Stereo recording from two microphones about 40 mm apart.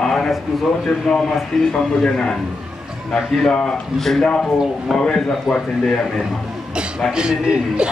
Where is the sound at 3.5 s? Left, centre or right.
Left.